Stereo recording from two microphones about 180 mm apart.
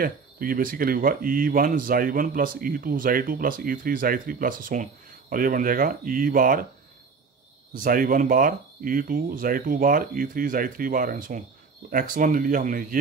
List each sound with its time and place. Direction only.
0.0 s speech: 50° right (ahead or behind)
7.7 s speech: 50° right (ahead or behind)